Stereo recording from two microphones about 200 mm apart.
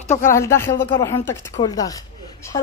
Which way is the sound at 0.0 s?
35° left (ahead or behind).